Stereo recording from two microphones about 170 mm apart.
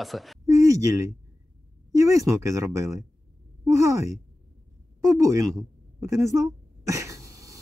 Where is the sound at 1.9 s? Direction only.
20° right (ahead or behind).